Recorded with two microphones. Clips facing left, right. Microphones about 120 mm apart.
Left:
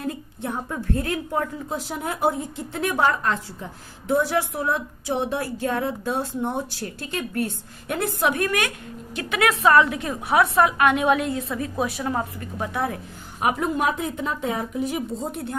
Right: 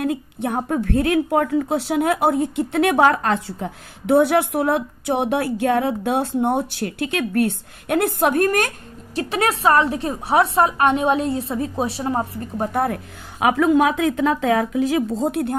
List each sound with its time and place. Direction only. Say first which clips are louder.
0.0 s a woman's voice: right 7 dB; 65° right (ahead or behind); by 12.8 s 40° right (ahead or behind)
12.8 s a woman's voice: right 4 dB; 75° right (ahead or behind)